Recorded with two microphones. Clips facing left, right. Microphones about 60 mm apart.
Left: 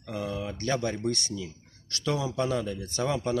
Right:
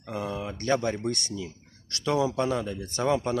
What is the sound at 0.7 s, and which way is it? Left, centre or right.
Speech, centre.